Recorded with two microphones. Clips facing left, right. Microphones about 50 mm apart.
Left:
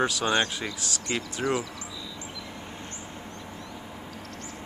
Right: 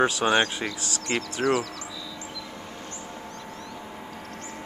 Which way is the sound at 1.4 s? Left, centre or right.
Centre.